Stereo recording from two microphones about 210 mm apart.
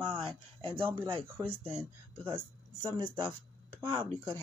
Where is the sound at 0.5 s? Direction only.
25° right (ahead or behind).